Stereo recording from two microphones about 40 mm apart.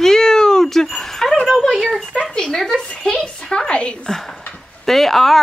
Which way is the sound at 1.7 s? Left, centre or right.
Centre.